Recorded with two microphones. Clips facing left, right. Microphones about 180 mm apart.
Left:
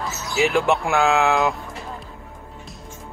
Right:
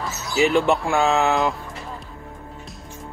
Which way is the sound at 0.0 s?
Centre (ahead or behind).